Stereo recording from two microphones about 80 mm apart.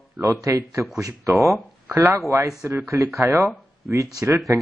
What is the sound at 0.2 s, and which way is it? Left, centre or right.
Speech, right.